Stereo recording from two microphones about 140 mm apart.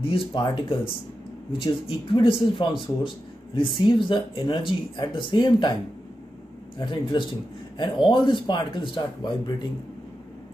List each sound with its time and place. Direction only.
0.0 s speech: 35° left (ahead or behind)
6.8 s speech: 35° left (ahead or behind)